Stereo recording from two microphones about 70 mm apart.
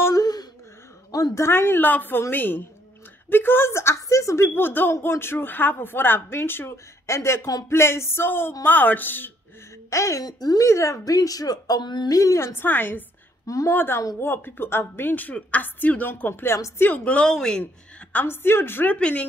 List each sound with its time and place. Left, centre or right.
0.1 s a sound: left
1.1 s a woman's voice: left
4.6 s a woman's voice: left
9.8 s speech: left
10.2 s a woman's voice: left
10.6 s speech: left
12.2 s a woman's voice: left
12.5 s a woman's voice: left
16.8 s speech: left
17.3 s speech: centre
18.1 s a woman's voice: left
18.9 s speech: centre